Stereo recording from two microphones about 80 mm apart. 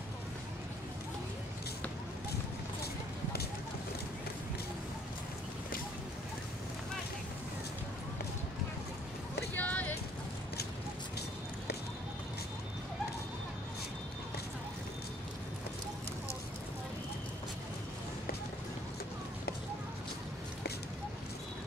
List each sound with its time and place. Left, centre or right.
9.5 s vehicle: centre